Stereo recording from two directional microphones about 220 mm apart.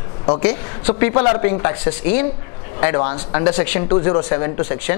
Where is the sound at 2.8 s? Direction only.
20° left (ahead or behind).